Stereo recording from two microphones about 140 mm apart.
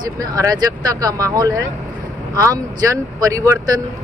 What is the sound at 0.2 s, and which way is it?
Speech, 25° right (ahead or behind).